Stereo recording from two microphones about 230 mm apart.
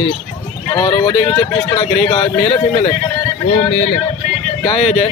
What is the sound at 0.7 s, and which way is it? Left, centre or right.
A man's voice, centre.